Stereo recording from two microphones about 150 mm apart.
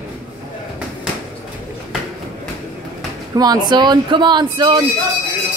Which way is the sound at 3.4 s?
25° right (ahead or behind).